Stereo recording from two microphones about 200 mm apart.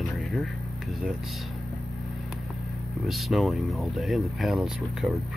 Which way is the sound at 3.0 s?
Centre (ahead or behind).